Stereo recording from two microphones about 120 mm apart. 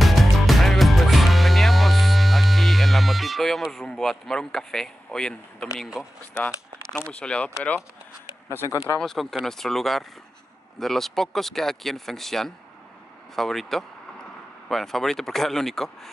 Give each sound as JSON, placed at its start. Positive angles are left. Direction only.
{"t": 0.0, "sound": "music", "side_deg": 0}
{"t": 5.8, "sound": "speech", "side_deg": 0}
{"t": 6.3, "sound": "speech", "side_deg": 10}
{"t": 8.5, "sound": "speech", "side_deg": 25}
{"t": 9.0, "sound": "speech", "side_deg": 5}